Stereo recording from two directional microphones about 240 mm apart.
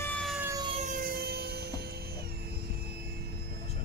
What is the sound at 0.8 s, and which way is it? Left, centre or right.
Emergency vehicle, right.